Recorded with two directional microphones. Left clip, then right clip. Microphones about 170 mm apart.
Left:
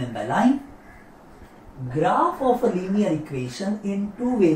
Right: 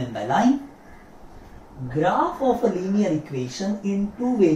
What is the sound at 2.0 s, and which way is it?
Speech, centre (ahead or behind).